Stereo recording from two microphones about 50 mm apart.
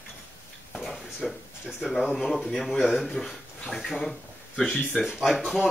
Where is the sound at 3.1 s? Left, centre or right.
Centre.